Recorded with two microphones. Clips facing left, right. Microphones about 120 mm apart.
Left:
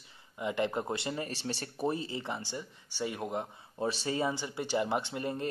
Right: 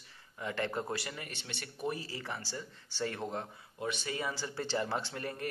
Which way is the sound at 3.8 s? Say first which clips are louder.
Left 5 dB; 30° left (ahead or behind).